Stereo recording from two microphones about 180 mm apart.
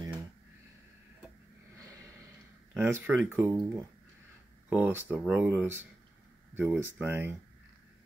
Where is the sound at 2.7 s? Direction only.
10° right (ahead or behind).